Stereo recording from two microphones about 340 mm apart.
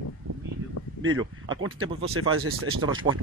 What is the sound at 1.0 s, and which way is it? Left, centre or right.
Speech, right.